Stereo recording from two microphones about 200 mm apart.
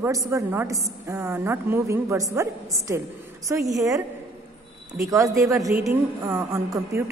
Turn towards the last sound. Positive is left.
turn(degrees=-15)  # may be behind; listen again after turning